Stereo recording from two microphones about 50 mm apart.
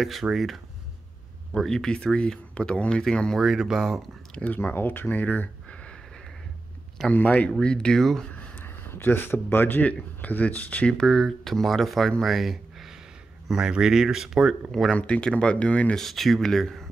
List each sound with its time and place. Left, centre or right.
0.0 s speech: centre
1.5 s speech: centre
3.3 s speech: centre
4.7 s speech: left
7.1 s speech: left
7.6 s speech: centre
8.0 s speech: centre
8.6 s a man's voice: left
9.8 s speech: left
10.9 s speech: centre
13.7 s speech: centre
15.0 s speech: left
16.0 s speech: centre